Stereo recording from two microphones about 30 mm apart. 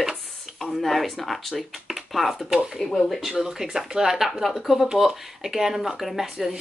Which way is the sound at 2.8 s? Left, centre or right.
Centre.